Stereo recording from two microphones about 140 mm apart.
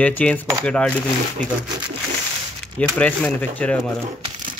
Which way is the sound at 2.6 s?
5° left (ahead or behind).